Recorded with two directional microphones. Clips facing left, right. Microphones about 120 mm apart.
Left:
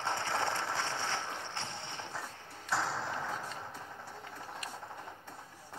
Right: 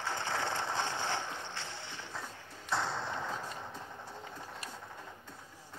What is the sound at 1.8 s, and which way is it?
Vehicle, 20° left (ahead or behind).